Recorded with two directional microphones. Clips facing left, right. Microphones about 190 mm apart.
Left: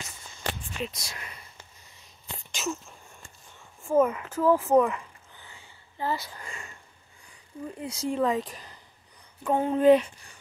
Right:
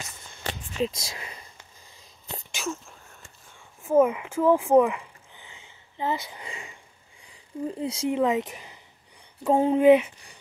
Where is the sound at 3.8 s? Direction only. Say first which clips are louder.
Right 3 dB; 10° right (ahead or behind).